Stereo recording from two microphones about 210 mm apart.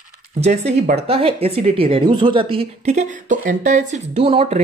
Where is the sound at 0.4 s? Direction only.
30° right (ahead or behind).